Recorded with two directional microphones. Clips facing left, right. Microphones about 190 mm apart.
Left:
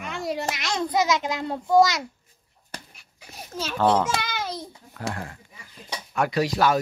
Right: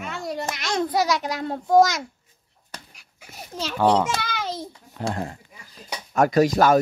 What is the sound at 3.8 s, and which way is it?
Babbling, 15° right (ahead or behind).